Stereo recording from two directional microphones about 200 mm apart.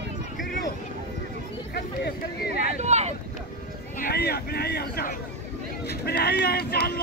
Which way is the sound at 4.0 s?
50° left (ahead or behind).